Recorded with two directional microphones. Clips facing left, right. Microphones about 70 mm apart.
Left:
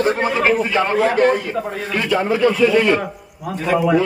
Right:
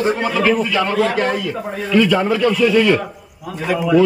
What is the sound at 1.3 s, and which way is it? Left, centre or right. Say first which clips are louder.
A man's voice: left 2 dB; left.